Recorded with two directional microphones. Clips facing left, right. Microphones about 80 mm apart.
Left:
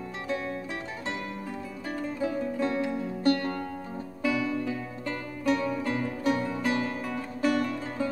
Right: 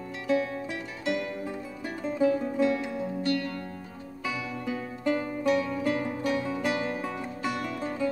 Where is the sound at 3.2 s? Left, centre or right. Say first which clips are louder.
Left 5 dB; left.